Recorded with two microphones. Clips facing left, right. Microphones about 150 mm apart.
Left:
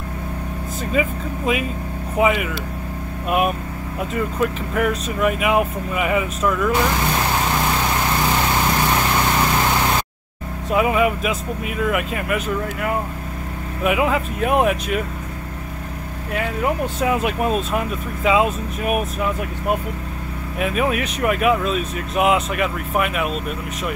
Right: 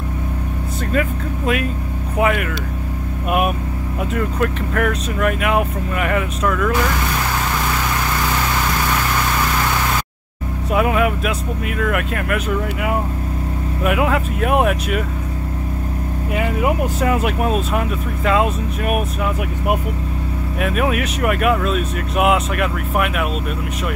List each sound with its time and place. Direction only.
0.9 s speech: centre (ahead or behind)
8.8 s vehicle: 25° left (ahead or behind)
10.7 s speech: centre (ahead or behind)
16.3 s speech: 10° right (ahead or behind)
20.5 s speech: centre (ahead or behind)